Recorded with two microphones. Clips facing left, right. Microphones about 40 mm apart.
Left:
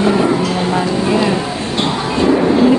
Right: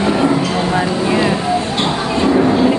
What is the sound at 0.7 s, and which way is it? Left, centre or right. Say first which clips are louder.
Speech: left 1 dB; centre.